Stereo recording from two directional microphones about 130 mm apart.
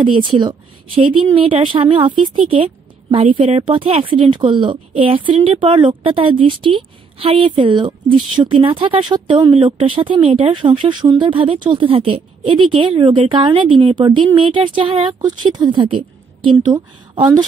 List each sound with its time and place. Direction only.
0.0 s speech: 40° right (ahead or behind)